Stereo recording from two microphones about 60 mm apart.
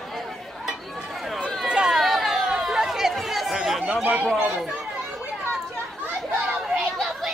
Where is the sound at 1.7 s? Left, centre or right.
Centre.